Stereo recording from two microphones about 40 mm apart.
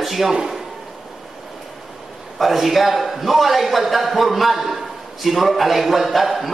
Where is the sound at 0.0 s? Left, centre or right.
Centre.